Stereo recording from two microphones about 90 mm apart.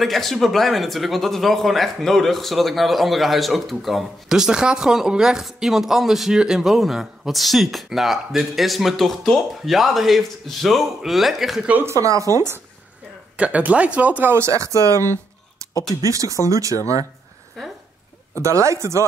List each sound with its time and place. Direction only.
0.0 s speech: centre (ahead or behind)
11.8 s speech: 35° right (ahead or behind)
13.4 s speech: 15° right (ahead or behind); by 14.7 s 30° right (ahead or behind)
15.9 s speech: 40° right (ahead or behind)
18.4 s speech: 35° right (ahead or behind)